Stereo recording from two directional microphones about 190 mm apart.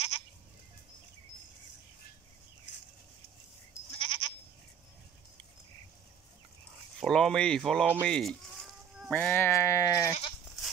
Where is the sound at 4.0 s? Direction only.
25° left (ahead or behind).